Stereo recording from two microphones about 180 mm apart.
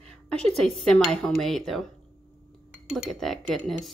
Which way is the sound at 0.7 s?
Centre (ahead or behind).